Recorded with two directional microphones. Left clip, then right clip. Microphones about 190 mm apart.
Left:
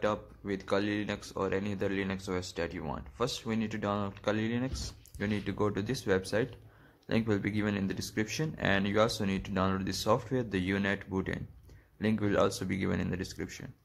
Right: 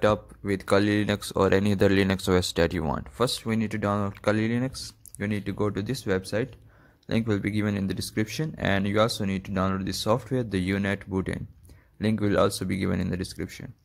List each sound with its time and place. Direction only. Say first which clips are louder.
0.0 s speech: right 9 dB; 40° right (ahead or behind); by 13.7 s 20° right (ahead or behind)